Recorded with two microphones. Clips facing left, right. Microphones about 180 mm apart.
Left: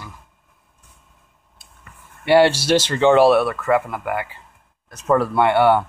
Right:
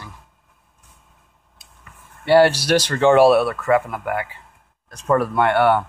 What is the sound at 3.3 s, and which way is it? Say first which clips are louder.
Speech: even; centre (ahead or behind).